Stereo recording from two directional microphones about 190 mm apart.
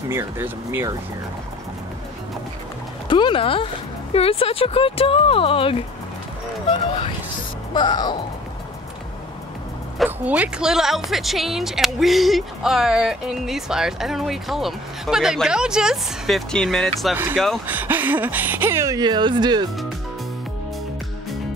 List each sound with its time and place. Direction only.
0.1 s speech: 10° right (ahead or behind)
3.1 s speech: 25° left (ahead or behind)
7.7 s speech: 20° left (ahead or behind)
10.0 s speech: 10° right (ahead or behind)
17.6 s speech: 10° right (ahead or behind)